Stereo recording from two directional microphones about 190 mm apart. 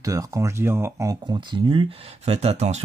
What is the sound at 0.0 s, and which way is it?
Speech, 15° right (ahead or behind).